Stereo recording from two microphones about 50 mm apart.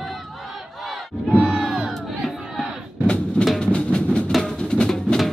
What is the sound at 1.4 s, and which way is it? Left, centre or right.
Crowd, centre.